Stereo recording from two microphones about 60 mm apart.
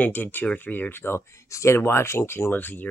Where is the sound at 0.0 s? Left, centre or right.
Left.